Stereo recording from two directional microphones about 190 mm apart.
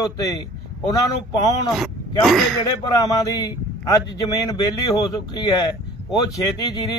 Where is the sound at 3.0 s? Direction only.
20° left (ahead or behind).